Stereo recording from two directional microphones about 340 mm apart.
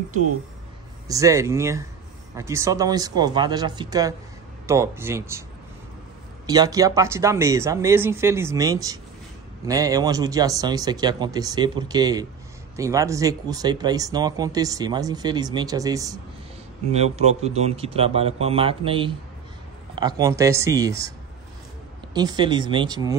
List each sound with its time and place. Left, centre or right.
1.0 s speech: centre
6.4 s speech: centre
22.1 s speech: centre